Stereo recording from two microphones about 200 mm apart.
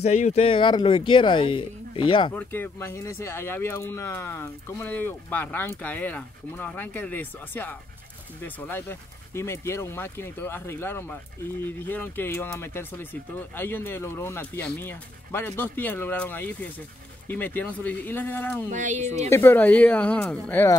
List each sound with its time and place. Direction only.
0.0 s speech: 35° left (ahead or behind)
2.3 s speech: 10° left (ahead or behind)
18.7 s speech: 35° right (ahead or behind)
19.0 s speech: 10° left (ahead or behind)